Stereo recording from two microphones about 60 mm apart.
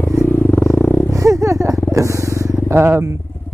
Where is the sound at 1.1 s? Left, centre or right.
Right.